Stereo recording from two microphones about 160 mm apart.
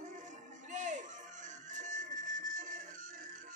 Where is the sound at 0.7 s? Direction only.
50° right (ahead or behind).